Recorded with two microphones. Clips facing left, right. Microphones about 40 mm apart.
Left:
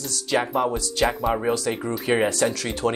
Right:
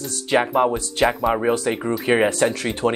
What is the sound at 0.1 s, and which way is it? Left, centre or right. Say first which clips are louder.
Speech: right 4 dB; right.